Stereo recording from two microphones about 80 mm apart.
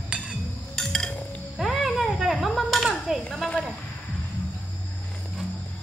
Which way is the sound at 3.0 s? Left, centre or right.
Centre.